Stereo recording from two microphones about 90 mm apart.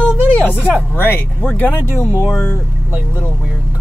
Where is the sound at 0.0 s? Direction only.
15° left (ahead or behind).